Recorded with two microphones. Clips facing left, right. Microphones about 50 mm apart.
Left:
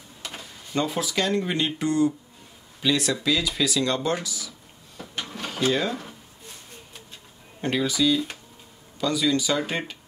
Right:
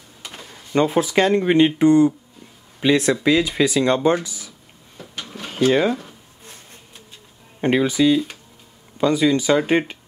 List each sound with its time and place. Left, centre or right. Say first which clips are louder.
0.7 s speech: right 8 dB; right
5.1 s printer: even; centre
5.7 s speech: right 7 dB; right
7.6 s speech: right 6 dB; right